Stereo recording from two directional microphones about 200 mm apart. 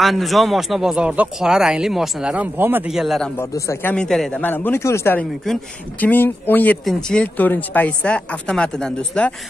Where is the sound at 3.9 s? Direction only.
5° left (ahead or behind).